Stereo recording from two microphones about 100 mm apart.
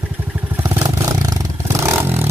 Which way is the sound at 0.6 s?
30° right (ahead or behind).